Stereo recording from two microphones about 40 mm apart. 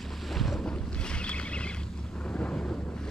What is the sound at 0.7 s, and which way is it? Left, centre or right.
Boat, left.